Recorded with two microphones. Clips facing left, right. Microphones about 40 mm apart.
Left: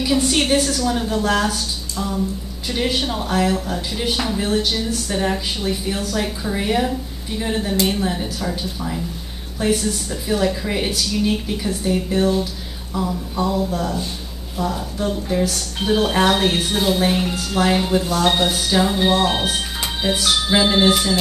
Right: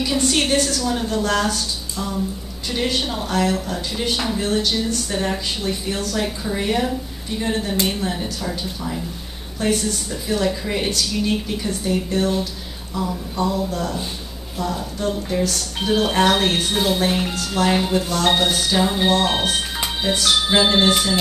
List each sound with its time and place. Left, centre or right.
0.0 s speech: centre